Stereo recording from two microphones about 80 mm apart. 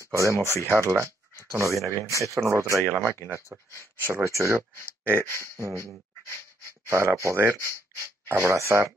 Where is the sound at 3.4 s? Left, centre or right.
Left.